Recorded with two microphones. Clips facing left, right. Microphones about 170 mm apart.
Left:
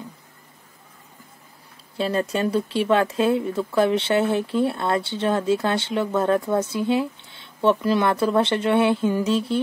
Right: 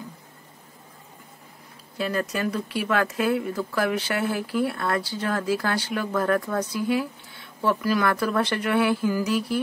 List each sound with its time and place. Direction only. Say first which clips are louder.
2.0 s speech: left 4 dB; 30° left (ahead or behind)